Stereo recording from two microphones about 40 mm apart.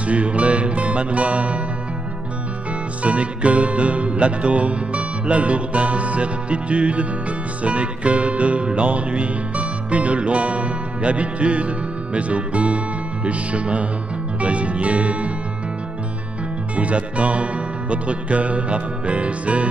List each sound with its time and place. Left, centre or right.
0.0 s music: right
3.0 s music: right
16.7 s music: right